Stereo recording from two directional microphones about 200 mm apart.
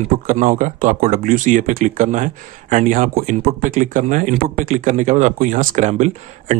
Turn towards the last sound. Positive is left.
turn(degrees=-35)  # may be behind; listen again after turning